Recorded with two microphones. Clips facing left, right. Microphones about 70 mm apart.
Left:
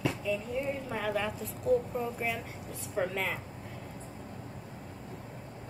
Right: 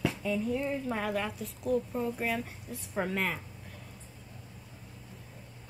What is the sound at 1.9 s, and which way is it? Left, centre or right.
Speech, centre.